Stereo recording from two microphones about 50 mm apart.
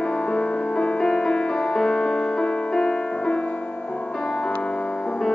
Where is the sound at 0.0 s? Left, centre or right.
Left.